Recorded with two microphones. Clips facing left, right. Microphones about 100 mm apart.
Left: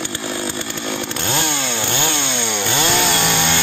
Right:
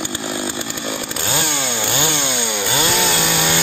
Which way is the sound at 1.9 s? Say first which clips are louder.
Right 1 dB; 10° right (ahead or behind).